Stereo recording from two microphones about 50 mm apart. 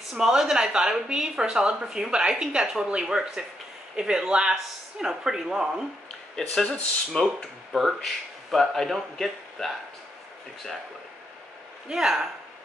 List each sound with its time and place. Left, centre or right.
0.1 s a woman's voice: centre
6.3 s speech: centre
7.7 s speech: centre
11.9 s a woman's voice: centre